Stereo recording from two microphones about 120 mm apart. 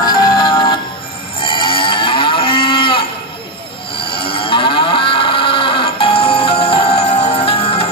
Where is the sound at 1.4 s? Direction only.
45° left (ahead or behind).